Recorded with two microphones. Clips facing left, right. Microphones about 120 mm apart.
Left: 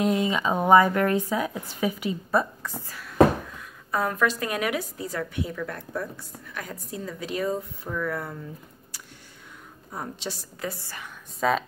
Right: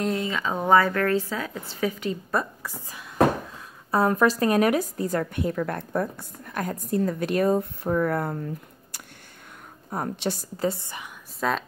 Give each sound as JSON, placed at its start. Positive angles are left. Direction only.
{"t": 0.0, "sound": "a woman's voice", "side_deg": 15}
{"t": 3.5, "sound": "a woman's voice", "side_deg": -30}
{"t": 9.8, "sound": "a woman's voice", "side_deg": -55}
{"t": 10.6, "sound": "a woman's voice", "side_deg": -25}
{"t": 11.3, "sound": "speech", "side_deg": 0}